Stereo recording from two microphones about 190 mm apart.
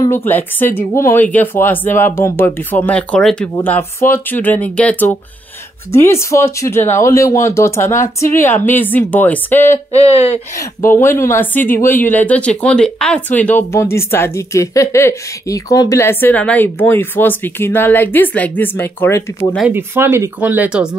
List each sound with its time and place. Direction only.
0.0 s speech: 10° left (ahead or behind)
9.9 s speech: 30° left (ahead or behind)
10.8 s speech: 15° left (ahead or behind)
19.7 s speech: 10° right (ahead or behind)